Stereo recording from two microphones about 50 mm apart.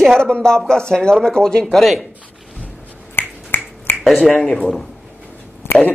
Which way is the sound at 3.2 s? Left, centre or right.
Left.